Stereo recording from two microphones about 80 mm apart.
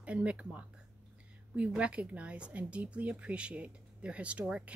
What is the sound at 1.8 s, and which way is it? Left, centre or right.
Speech, centre.